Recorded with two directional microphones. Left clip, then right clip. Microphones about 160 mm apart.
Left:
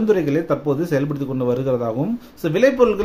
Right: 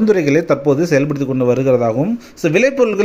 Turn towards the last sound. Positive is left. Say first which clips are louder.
# right 2 dB
turn(degrees=-25)  # may be behind; listen again after turning